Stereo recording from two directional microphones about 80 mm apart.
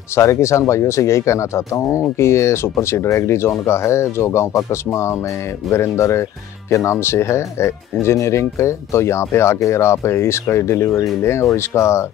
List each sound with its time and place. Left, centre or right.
0.1 s speech: left